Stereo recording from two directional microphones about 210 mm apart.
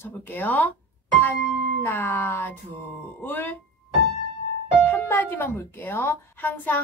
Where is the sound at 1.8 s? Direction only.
10° left (ahead or behind).